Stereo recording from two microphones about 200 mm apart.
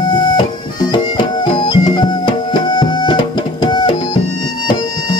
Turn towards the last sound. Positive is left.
turn(degrees=25)  # may be behind; listen again after turning